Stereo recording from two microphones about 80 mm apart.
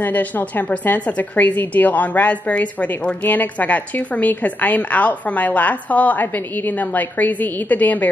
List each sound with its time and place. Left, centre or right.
0.0 s a woman's voice: left